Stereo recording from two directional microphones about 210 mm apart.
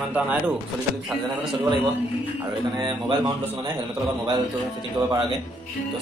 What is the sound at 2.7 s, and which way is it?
Speech, 20° right (ahead or behind).